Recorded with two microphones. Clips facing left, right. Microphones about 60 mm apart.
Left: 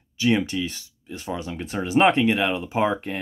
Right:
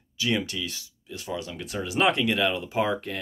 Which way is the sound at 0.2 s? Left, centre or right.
Left.